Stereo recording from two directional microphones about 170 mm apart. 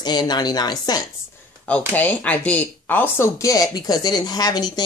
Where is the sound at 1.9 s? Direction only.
10° left (ahead or behind).